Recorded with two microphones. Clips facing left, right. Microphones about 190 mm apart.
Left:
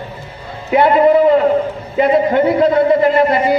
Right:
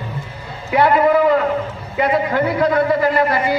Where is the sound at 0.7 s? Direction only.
25° left (ahead or behind).